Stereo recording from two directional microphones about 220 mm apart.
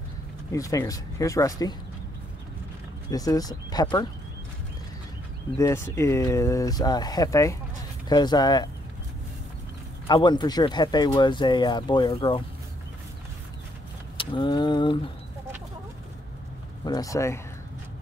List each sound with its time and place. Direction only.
0.5 s speech: 15° left (ahead or behind)
3.1 s speech: 15° left (ahead or behind)
5.6 s speech: 15° left (ahead or behind)
10.0 s speech: 20° left (ahead or behind)
14.1 s speech: 20° left (ahead or behind)
16.8 s speech: 15° left (ahead or behind)